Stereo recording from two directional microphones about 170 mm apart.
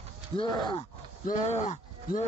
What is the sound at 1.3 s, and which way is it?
Speech, 45° left (ahead or behind).